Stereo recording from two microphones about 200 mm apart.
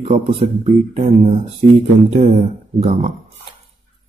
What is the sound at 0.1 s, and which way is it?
A man's voice, 30° right (ahead or behind).